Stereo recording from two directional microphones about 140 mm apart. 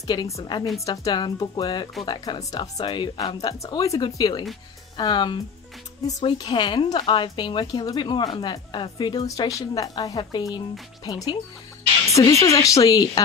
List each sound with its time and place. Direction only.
0.0 s a woman's voice: 25° left (ahead or behind)